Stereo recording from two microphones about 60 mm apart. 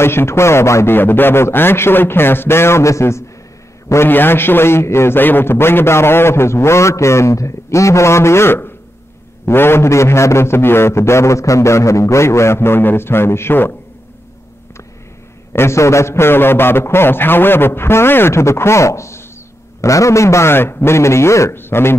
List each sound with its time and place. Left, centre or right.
0.0 s a man's voice: left
0.8 s a man's voice: left
3.9 s a man's voice: left
15.5 s a man's voice: left
21.5 s a man's voice: left